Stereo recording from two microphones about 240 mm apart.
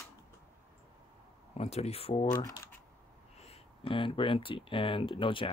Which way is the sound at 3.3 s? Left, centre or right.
Left.